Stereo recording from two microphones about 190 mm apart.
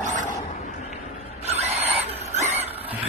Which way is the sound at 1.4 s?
35° right (ahead or behind).